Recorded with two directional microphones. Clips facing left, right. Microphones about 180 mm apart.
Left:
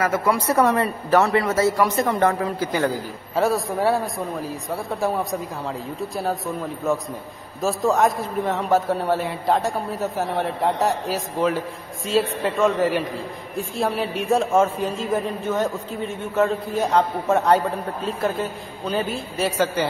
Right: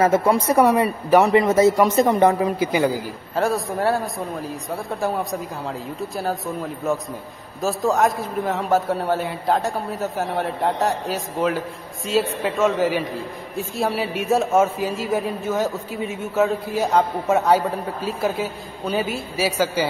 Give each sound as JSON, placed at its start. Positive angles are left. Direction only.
{"t": 0.0, "sound": "a man's voice", "side_deg": -25}
{"t": 3.3, "sound": "a man's voice", "side_deg": 0}